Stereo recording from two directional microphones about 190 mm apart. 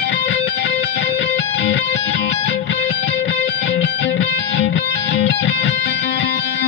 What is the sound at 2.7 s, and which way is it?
Music, 75° left (ahead or behind).